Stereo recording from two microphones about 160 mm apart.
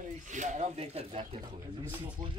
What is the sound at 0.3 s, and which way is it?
Speech, 50° right (ahead or behind).